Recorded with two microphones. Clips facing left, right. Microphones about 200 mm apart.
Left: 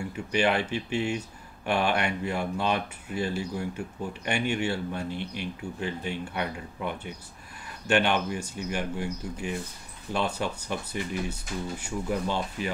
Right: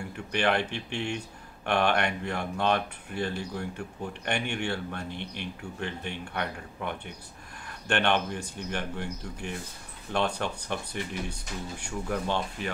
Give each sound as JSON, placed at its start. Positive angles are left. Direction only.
{"t": 0.3, "sound": "speech", "side_deg": 10}